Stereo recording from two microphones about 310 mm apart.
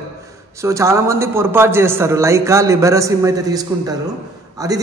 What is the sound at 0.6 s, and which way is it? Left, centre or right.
A man's voice, centre.